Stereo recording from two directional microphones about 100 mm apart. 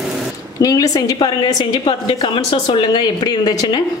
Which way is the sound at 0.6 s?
40° left (ahead or behind).